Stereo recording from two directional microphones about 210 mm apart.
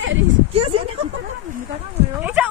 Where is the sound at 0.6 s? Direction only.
30° right (ahead or behind).